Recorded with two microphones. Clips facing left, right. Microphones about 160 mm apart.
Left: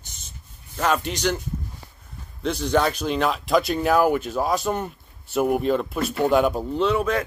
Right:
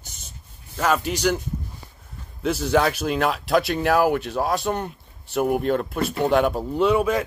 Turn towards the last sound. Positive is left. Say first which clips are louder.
# right 2 dB
turn(degrees=-10)  # may be behind; listen again after turning